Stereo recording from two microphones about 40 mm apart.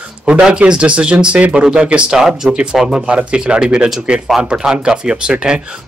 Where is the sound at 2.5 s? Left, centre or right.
Right.